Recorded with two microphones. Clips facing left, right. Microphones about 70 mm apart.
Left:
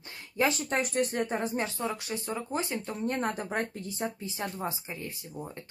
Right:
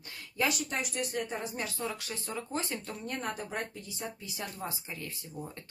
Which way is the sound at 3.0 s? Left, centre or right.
Left.